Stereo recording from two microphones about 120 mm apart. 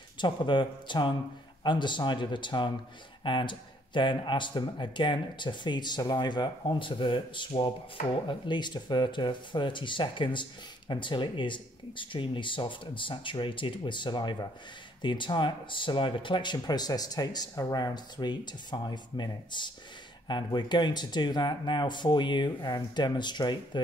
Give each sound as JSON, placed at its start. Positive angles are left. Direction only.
{"t": 0.2, "sound": "speech", "side_deg": 40}